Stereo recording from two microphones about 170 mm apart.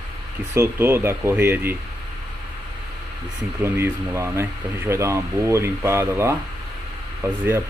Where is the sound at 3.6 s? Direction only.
15° right (ahead or behind).